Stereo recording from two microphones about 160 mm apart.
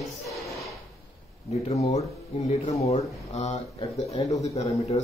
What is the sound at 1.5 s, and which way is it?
Speech, 45° left (ahead or behind).